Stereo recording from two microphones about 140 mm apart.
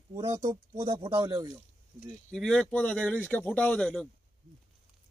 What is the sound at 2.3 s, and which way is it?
Speech, 5° left (ahead or behind).